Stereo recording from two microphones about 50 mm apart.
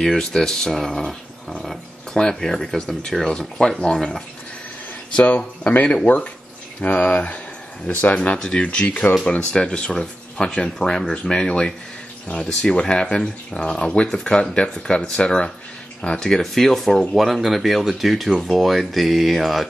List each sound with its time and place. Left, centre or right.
0.0 s speech: centre
5.1 s speech: left; by 19.7 s centre